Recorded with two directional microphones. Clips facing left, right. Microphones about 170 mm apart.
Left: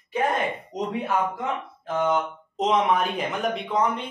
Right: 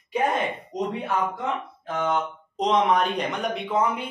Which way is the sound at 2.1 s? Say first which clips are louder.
Left 1 dB; 5° left (ahead or behind).